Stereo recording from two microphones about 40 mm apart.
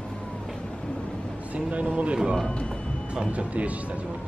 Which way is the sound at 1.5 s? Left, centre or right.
Right.